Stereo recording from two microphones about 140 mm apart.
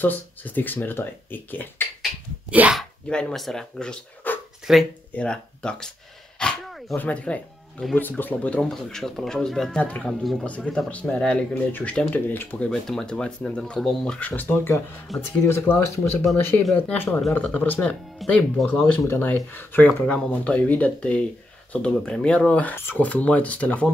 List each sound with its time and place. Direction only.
0.0 s speech: 15° left (ahead or behind)
2.5 s speech: 10° right (ahead or behind)
2.8 s speech: 5° left (ahead or behind)
4.7 s speech: 5° right (ahead or behind)
5.1 s speech: 5° left (ahead or behind)